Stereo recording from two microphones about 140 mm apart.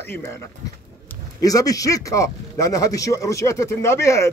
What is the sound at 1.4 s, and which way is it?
A man's voice, 25° left (ahead or behind).